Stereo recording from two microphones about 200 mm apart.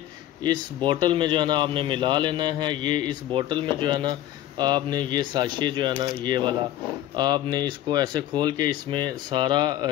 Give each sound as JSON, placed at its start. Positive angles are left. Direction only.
{"t": 0.4, "sound": "speech", "side_deg": -20}